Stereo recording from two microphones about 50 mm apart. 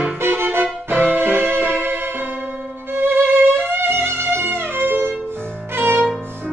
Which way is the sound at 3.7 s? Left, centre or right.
Right.